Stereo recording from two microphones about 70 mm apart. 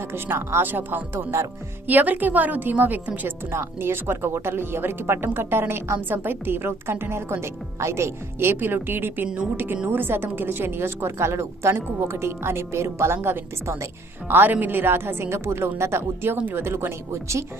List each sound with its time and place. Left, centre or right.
0.1 s a woman's voice: right